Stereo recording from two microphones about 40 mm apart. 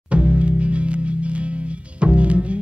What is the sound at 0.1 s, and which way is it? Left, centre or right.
Music, right.